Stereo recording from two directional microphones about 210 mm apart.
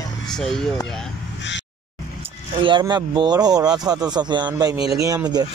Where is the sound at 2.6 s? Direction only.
20° right (ahead or behind).